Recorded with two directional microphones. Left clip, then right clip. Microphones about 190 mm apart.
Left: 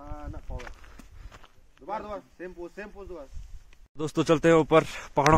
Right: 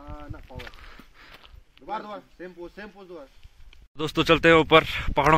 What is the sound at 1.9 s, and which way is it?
Speech, 40° right (ahead or behind).